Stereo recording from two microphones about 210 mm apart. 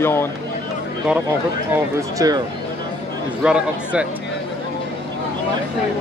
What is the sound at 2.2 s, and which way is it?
Speech, 15° right (ahead or behind).